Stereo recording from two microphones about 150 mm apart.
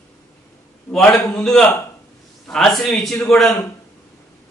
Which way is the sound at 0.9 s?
5° left (ahead or behind).